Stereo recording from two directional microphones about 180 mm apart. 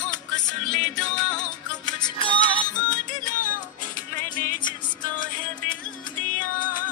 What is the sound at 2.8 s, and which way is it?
Music, 45° left (ahead or behind).